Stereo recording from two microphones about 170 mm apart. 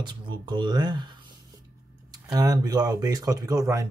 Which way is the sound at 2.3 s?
25° right (ahead or behind).